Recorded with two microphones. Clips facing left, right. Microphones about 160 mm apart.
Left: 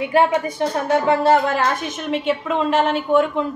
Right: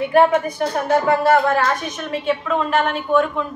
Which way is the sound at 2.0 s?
20° left (ahead or behind).